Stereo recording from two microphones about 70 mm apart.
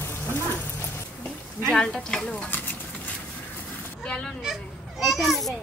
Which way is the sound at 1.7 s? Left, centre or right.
Centre.